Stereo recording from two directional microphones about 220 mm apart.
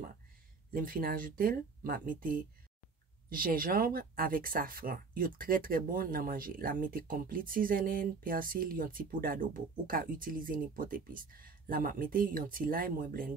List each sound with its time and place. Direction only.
0.7 s speech: 40° right (ahead or behind)